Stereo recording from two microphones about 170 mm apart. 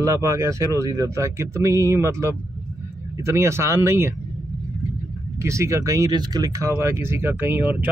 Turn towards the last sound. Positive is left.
turn(degrees=-10)  # may be behind; listen again after turning